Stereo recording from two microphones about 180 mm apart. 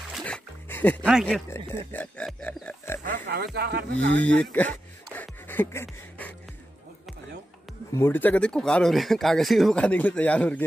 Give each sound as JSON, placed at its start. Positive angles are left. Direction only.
{"t": 0.1, "sound": "music", "side_deg": 5}
{"t": 1.0, "sound": "speech", "side_deg": 0}
{"t": 1.7, "sound": "speech", "side_deg": 10}
{"t": 3.3, "sound": "speech", "side_deg": -60}
{"t": 4.4, "sound": "a sound", "side_deg": 10}
{"t": 7.9, "sound": "speech", "side_deg": 15}